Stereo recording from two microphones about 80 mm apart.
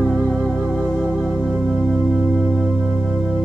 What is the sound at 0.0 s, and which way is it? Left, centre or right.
Music, centre.